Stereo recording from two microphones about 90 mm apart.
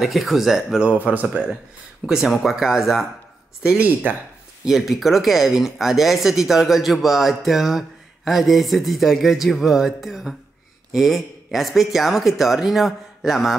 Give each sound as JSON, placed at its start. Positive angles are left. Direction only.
{"t": 0.0, "sound": "speech", "side_deg": 0}
{"t": 3.6, "sound": "speech", "side_deg": -15}
{"t": 4.6, "sound": "speech", "side_deg": 0}